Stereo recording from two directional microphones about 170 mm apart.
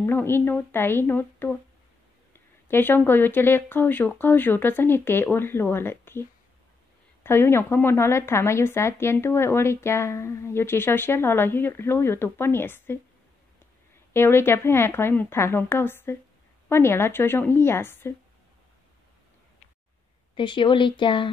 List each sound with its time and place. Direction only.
0.0 s a woman's voice: 15° left (ahead or behind)
7.2 s a woman's voice: 15° left (ahead or behind)
14.1 s a woman's voice: 15° left (ahead or behind)
20.3 s speech: 30° left (ahead or behind)